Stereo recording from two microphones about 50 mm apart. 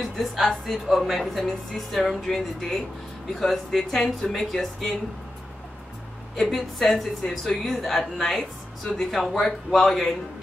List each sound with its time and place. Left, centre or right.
0.0 s speech: centre
6.5 s speech: centre